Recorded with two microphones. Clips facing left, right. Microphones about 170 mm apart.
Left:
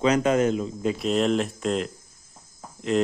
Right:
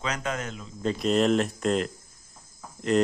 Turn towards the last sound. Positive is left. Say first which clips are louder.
# even
turn(degrees=0)  # may be behind; listen again after turning